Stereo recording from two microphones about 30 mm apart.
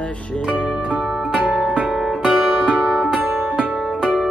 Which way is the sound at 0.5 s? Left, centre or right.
Right.